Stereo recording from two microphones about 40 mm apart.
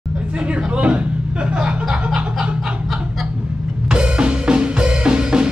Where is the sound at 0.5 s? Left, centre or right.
Right.